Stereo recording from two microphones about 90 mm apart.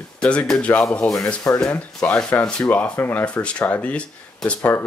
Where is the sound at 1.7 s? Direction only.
10° left (ahead or behind).